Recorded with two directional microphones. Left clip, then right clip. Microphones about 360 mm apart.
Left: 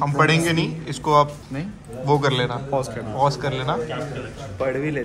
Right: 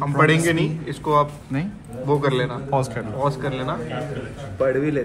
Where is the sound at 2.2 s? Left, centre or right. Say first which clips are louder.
Even; left.